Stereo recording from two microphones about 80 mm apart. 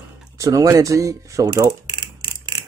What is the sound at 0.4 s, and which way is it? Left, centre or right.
Speech, right.